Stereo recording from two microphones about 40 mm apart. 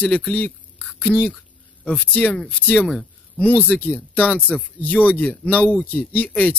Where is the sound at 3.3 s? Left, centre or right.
Left.